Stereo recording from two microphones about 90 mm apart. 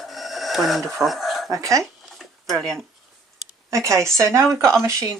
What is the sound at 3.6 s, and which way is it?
Speech, 35° right (ahead or behind).